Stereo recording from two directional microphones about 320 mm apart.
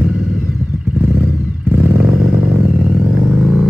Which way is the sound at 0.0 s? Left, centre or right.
Centre.